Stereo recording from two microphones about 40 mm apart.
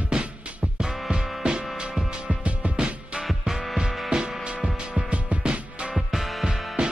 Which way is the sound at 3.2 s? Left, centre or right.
Centre.